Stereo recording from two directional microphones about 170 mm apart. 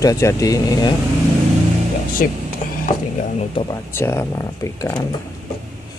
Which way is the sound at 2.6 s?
50° left (ahead or behind).